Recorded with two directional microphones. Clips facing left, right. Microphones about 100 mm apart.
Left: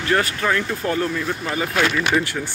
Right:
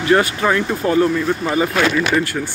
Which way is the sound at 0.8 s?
10° right (ahead or behind).